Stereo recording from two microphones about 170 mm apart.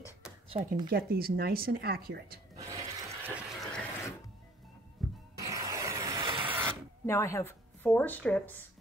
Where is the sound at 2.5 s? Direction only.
20° right (ahead or behind).